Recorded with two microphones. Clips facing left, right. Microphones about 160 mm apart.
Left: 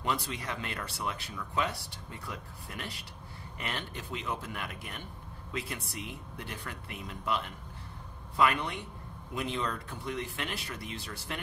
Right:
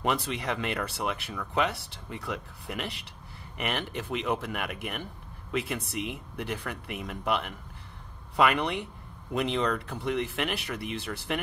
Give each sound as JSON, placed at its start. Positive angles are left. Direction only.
{"t": 0.0, "sound": "speech", "side_deg": -75}